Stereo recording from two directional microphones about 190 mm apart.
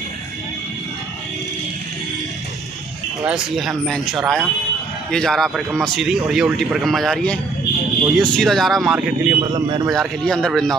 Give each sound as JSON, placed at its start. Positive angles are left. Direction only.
{"t": 3.3, "sound": "a man's voice", "side_deg": 0}
{"t": 9.4, "sound": "speech", "side_deg": -20}
{"t": 9.9, "sound": "a man's voice", "side_deg": 5}